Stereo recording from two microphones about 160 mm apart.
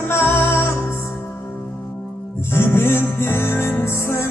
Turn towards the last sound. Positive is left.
turn(degrees=15)  # may be behind; listen again after turning